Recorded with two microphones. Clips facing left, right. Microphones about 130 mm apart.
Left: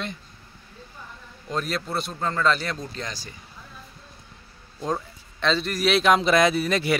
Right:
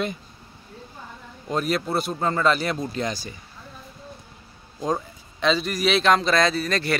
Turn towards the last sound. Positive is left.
turn(degrees=15)  # may be behind; listen again after turning